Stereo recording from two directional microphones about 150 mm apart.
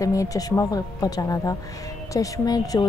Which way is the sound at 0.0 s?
20° left (ahead or behind).